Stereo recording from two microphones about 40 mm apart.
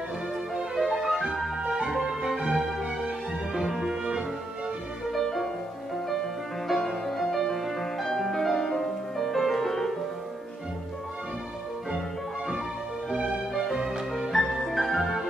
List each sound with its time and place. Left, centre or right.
0.7 s music: centre
5.1 s music: centre
6.7 s music: centre
13.1 s music: centre
13.7 s music: centre